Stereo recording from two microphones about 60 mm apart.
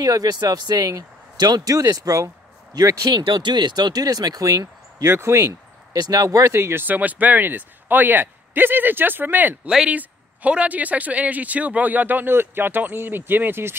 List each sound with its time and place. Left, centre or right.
0.0 s speech: right
5.0 s speech: right
6.0 s speech: right